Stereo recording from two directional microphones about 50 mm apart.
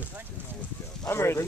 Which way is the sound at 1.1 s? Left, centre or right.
Left.